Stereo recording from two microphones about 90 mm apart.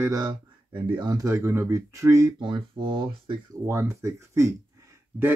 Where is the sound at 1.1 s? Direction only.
40° right (ahead or behind).